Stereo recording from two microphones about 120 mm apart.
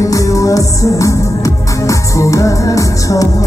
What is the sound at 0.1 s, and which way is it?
Music, 25° left (ahead or behind).